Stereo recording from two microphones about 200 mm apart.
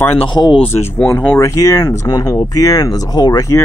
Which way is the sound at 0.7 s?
10° left (ahead or behind).